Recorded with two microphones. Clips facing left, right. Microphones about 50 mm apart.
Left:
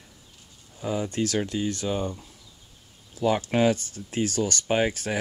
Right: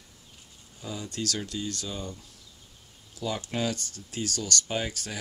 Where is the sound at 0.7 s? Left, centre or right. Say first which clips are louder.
Left 8 dB; left.